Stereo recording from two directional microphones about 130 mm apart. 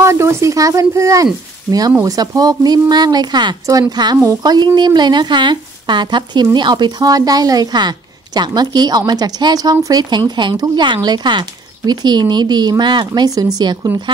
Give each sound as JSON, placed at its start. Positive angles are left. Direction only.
{"t": 0.0, "sound": "speech", "side_deg": -20}
{"t": 13.9, "sound": "speech", "side_deg": -15}